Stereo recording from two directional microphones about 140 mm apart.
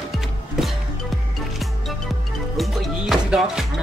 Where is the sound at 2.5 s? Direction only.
Centre (ahead or behind).